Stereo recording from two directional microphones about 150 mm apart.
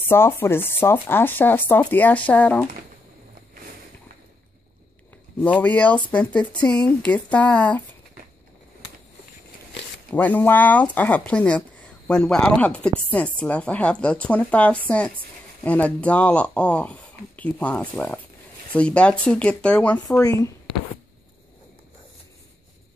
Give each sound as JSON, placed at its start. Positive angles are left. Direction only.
{"t": 0.1, "sound": "speech", "side_deg": 15}
{"t": 5.4, "sound": "speech", "side_deg": 10}
{"t": 10.1, "sound": "speech", "side_deg": 10}
{"t": 20.2, "sound": "speech", "side_deg": 20}